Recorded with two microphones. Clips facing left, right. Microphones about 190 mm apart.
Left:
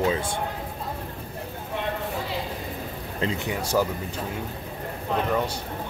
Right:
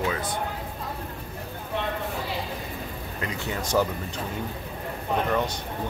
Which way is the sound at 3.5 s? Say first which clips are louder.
Right 1 dB; 10° left (ahead or behind).